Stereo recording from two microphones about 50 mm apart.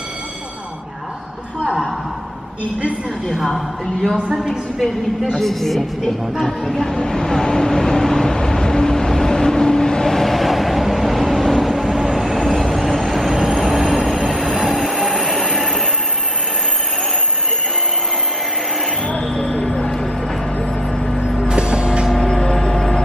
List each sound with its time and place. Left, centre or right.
1.6 s a woman's voice: centre
3.3 s a woman's voice: centre
5.4 s speech: centre
6.4 s vehicle: centre
13.6 s train: centre
14.5 s train: centre
14.8 s train: centre
19.0 s a sound: centre
20.9 s vehicle: centre
21.5 s vehicle: centre
22.1 s vehicle: centre